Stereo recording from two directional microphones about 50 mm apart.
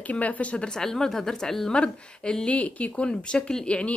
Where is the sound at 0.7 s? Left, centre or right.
Centre.